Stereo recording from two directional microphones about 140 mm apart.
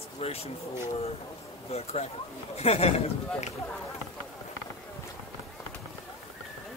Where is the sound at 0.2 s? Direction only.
45° left (ahead or behind).